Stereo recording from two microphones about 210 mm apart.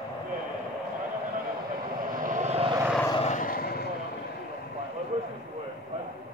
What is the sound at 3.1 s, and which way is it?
Vehicle, 30° left (ahead or behind).